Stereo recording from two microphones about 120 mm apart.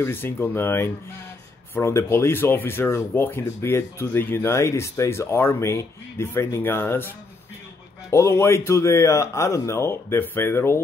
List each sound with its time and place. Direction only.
0.0 s speech: 20° left (ahead or behind)
8.1 s speech: 25° left (ahead or behind)